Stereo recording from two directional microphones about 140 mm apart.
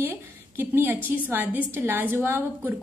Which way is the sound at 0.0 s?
15° right (ahead or behind).